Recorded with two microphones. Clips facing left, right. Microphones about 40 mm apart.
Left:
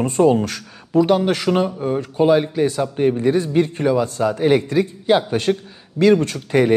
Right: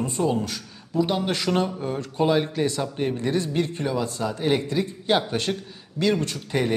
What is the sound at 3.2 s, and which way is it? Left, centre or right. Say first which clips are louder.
A man's voice: left 7 dB; left.